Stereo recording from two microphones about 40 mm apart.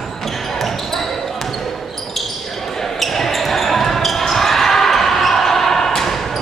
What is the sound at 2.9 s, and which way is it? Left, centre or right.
Basketball bounce, centre.